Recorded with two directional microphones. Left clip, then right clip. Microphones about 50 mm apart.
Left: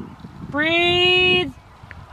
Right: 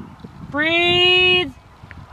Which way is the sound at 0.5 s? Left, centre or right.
Right.